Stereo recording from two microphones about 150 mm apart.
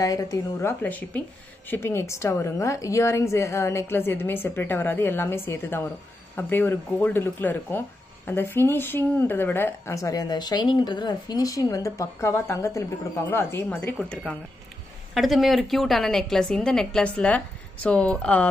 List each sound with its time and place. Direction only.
0.0 s a woman's voice: 25° left (ahead or behind); by 18.5 s 10° left (ahead or behind)